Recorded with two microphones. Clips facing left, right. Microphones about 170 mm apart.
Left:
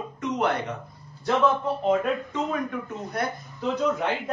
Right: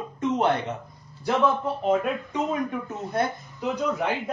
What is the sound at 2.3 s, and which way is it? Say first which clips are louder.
Speech: right 1 dB; 20° right (ahead or behind).